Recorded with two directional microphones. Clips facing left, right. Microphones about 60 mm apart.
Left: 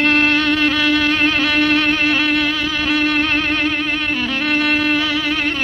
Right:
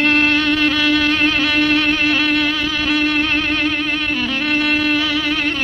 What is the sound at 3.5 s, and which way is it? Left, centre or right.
Violin, left.